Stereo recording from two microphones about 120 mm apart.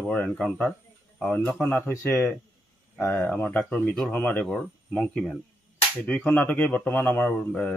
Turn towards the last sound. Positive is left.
turn(degrees=10)  # may be behind; listen again after turning